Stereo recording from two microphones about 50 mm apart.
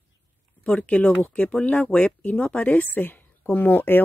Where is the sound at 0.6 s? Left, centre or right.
Left.